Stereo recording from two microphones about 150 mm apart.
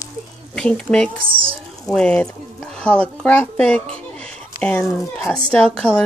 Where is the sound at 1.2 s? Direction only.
35° right (ahead or behind).